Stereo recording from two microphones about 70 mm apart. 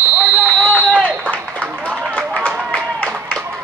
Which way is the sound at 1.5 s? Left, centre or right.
Right.